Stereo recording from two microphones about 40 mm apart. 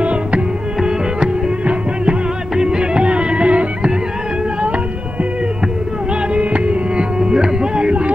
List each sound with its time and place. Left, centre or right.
0.0 s music: right
6.3 s music: right
7.2 s music: centre